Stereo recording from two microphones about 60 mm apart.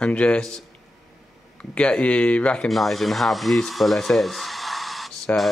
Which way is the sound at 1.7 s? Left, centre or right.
Centre.